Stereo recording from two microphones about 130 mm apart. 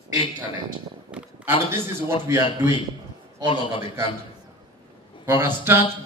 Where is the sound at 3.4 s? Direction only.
40° left (ahead or behind).